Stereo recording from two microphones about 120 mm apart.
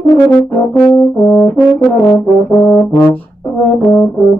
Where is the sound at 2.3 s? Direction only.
Centre (ahead or behind).